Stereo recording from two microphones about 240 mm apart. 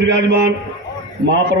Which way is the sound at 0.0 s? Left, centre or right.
Right.